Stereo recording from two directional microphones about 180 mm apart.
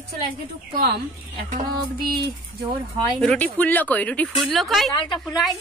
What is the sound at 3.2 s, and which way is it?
Speech, 5° left (ahead or behind).